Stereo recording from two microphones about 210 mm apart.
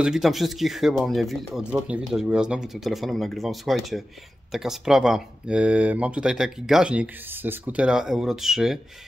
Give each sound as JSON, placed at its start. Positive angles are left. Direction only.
{"t": 0.0, "sound": "speech", "side_deg": 0}